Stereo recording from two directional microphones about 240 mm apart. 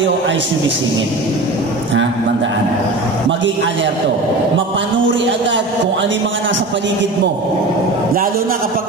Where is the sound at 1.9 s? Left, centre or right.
Right.